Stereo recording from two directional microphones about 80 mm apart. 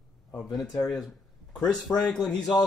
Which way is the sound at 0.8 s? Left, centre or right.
Centre.